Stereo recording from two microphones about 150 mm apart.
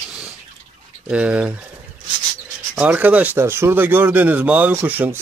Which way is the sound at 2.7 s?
10° right (ahead or behind).